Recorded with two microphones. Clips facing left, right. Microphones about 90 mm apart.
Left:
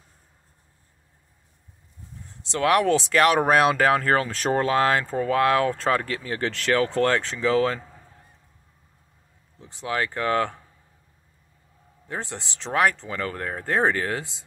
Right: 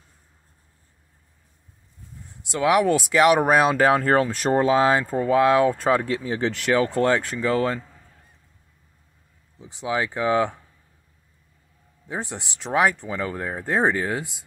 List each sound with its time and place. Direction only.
2.2 s speech: 10° right (ahead or behind)
9.6 s speech: 15° right (ahead or behind)
12.1 s speech: 15° right (ahead or behind)